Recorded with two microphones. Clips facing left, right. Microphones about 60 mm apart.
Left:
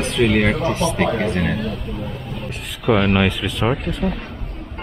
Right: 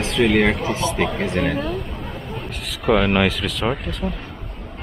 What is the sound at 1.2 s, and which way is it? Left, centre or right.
Speech, centre.